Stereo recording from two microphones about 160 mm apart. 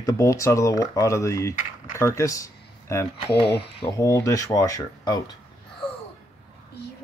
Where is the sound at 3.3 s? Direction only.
90° left.